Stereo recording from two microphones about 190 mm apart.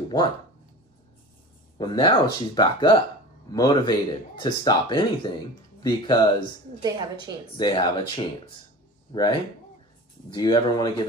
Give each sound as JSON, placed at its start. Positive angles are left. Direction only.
{"t": 0.1, "sound": "speech", "side_deg": 20}
{"t": 1.8, "sound": "speech", "side_deg": 25}
{"t": 6.8, "sound": "a woman's voice", "side_deg": -20}
{"t": 7.5, "sound": "speech", "side_deg": 25}
{"t": 9.1, "sound": "speech", "side_deg": 25}